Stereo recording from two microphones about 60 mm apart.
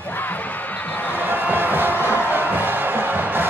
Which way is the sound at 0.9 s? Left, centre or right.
Left.